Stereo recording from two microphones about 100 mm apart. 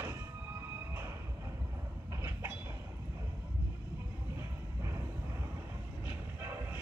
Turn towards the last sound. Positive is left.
turn(degrees=-25)  # may be behind; listen again after turning